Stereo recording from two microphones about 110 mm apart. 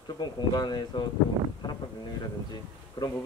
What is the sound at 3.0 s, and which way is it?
Speech, 40° left (ahead or behind).